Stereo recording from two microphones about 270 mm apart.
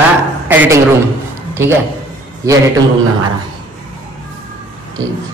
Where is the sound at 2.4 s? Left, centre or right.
Centre.